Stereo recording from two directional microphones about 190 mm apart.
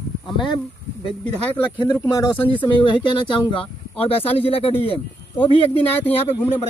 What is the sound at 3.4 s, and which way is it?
Speech, 30° left (ahead or behind).